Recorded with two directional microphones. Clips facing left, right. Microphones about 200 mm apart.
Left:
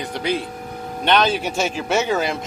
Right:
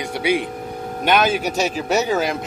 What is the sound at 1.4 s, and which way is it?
Speech, 40° right (ahead or behind).